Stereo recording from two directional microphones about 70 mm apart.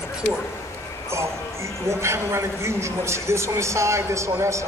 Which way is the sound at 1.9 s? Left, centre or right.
Right.